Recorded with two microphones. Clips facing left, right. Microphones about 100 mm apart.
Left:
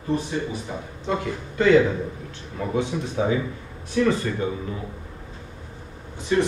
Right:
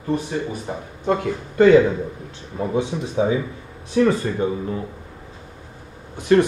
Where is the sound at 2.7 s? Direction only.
20° right (ahead or behind).